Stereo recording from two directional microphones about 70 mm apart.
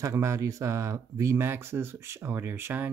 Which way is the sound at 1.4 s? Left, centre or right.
Right.